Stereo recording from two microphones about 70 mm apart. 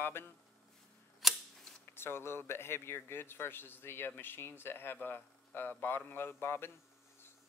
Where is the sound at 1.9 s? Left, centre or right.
Left.